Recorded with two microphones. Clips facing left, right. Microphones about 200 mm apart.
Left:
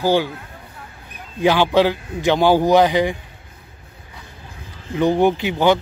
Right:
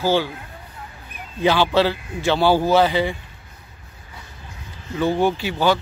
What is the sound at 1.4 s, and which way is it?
Speech, 15° left (ahead or behind).